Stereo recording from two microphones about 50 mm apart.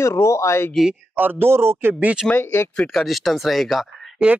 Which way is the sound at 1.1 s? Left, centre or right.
Right.